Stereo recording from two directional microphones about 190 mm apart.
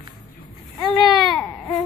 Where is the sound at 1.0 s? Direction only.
20° left (ahead or behind).